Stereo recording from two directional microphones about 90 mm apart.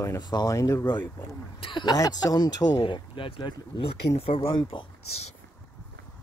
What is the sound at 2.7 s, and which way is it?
Speech, 70° left (ahead or behind).